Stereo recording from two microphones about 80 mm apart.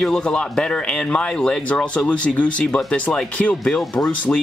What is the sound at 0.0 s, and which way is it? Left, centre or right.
Speech, centre.